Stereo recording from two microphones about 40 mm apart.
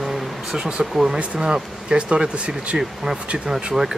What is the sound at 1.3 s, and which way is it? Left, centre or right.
Speech, right.